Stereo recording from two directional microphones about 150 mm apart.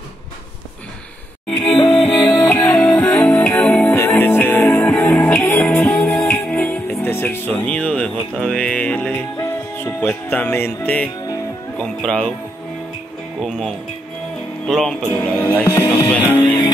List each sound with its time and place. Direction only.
2.5 s music: 20° left (ahead or behind)
2.8 s music: 10° left (ahead or behind)
11.8 s speech: 5° left (ahead or behind)
13.4 s speech: centre (ahead or behind)
16.1 s music: 10° left (ahead or behind)
16.4 s music: 30° left (ahead or behind)